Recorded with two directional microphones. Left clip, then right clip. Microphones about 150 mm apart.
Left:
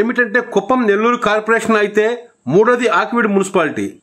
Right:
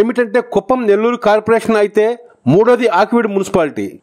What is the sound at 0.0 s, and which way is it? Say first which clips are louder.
A man's voice: right 1 dB; 45° right (ahead or behind).